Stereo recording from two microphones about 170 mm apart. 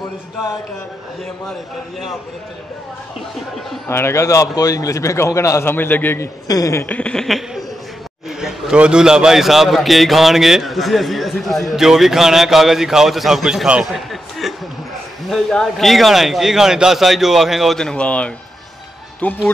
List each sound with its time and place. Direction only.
3.9 s a man's voice: 15° left (ahead or behind)